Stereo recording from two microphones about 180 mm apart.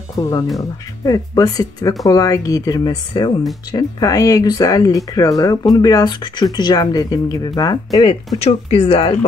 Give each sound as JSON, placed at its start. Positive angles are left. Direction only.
{"t": 0.1, "sound": "speech", "side_deg": 20}